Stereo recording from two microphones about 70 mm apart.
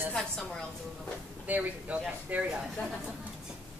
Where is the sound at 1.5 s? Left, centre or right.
Right.